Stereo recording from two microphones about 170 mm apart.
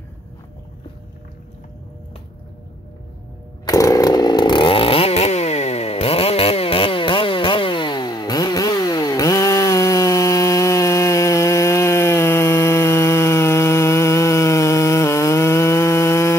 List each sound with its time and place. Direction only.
3.6 s chainsaw: 20° left (ahead or behind)